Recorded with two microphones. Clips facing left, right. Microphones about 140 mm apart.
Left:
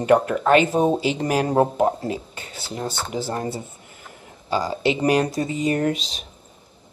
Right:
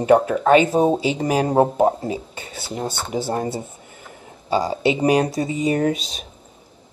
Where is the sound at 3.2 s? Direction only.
20° right (ahead or behind).